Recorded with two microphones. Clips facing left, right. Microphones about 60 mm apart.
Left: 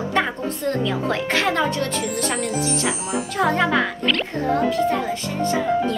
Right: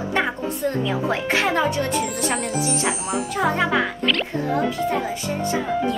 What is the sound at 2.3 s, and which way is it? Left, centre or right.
Speech, centre.